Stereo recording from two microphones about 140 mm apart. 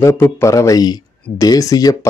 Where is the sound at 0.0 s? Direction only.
20° left (ahead or behind).